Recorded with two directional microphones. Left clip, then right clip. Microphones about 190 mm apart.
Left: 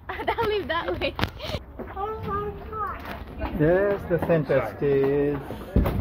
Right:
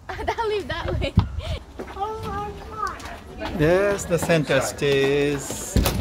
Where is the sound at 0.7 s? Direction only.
35° left (ahead or behind).